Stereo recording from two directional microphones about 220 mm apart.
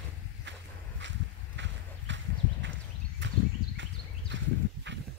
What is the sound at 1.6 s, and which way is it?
Horse, 55° right (ahead or behind).